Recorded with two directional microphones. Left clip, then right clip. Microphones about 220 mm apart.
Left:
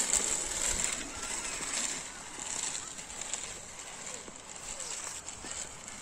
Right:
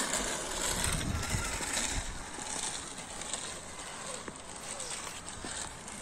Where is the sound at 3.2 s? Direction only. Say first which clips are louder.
Even; 20° right (ahead or behind).